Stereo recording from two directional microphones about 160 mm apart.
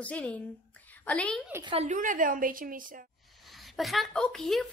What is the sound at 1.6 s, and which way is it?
A woman's voice, 45° right (ahead or behind).